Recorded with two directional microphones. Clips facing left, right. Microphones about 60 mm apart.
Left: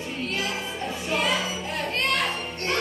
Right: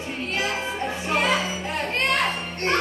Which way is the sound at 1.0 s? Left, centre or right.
Right.